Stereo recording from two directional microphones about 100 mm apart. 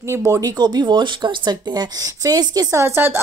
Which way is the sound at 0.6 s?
45° right (ahead or behind).